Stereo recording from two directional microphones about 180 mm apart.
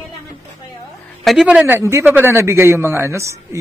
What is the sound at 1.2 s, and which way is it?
A man's voice, 5° right (ahead or behind).